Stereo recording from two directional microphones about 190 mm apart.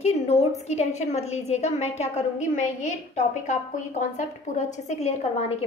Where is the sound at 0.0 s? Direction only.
35° left (ahead or behind).